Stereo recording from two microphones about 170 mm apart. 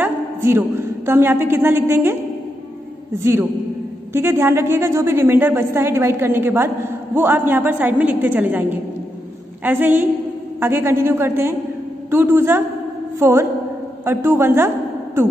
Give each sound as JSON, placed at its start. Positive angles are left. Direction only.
{"t": 0.0, "sound": "a woman's voice", "side_deg": -15}
{"t": 4.1, "sound": "a woman's voice", "side_deg": -15}